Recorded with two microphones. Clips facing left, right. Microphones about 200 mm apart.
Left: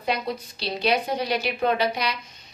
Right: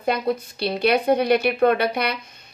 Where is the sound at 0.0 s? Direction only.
55° right (ahead or behind).